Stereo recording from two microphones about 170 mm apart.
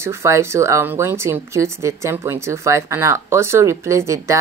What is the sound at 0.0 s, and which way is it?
Speech, 15° right (ahead or behind).